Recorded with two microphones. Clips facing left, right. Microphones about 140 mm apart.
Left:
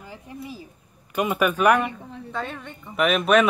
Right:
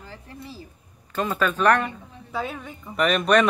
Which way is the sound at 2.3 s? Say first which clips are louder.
Right 2 dB; 5° right (ahead or behind).